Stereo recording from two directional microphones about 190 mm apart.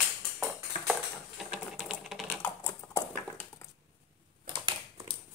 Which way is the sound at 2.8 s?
10° left (ahead or behind).